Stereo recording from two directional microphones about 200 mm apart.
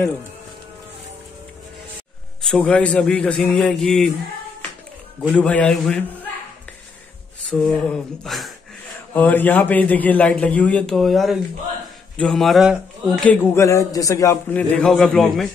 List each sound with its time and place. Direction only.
2.4 s a man's voice: 5° left (ahead or behind)
5.3 s a man's voice: 5° left (ahead or behind)
7.4 s a sound: 5° left (ahead or behind)
9.1 s a man's voice: 10° left (ahead or behind)